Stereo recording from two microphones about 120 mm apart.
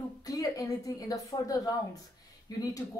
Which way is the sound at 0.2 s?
30° left (ahead or behind).